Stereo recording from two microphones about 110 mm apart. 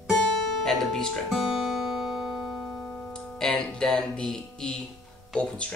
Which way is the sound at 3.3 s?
5° left (ahead or behind).